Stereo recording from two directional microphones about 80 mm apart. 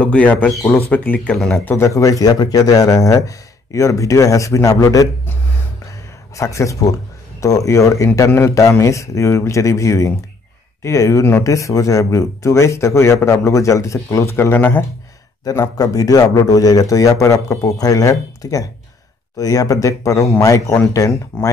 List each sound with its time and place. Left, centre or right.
0.0 s speech: centre
1.3 s speech: centre
1.6 s speech: left
1.9 s a man's voice: left
6.3 s a man's voice: left
15.8 s a man's voice: left